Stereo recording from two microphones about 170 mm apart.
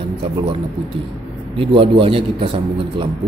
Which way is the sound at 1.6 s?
30° right (ahead or behind).